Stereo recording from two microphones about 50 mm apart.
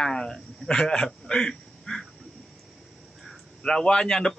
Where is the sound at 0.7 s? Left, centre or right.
Centre.